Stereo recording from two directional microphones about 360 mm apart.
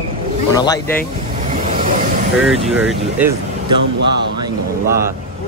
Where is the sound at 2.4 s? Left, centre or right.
Centre.